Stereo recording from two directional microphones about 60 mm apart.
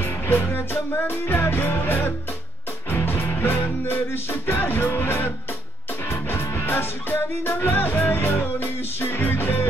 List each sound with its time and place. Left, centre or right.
0.0 s music: left